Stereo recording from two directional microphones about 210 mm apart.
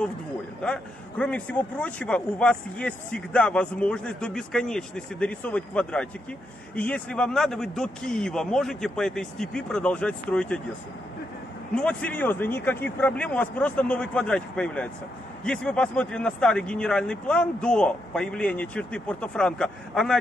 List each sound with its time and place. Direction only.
0.7 s a man's voice: 5° left (ahead or behind)
11.7 s a man's voice: 5° left (ahead or behind)